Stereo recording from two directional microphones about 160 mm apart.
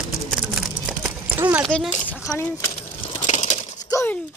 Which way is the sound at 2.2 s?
15° left (ahead or behind).